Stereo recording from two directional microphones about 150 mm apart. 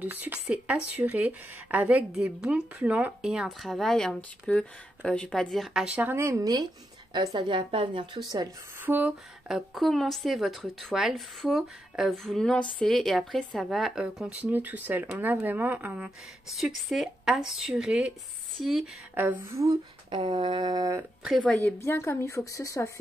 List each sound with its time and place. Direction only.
0.0 s speech: 10° right (ahead or behind); by 8.5 s 30° right (ahead or behind)
8.8 s speech: 10° right (ahead or behind)
9.8 s speech: centre (ahead or behind)
19.1 s speech: 15° right (ahead or behind)
20.1 s a sound: 35° right (ahead or behind)
21.4 s a woman's voice: 10° left (ahead or behind)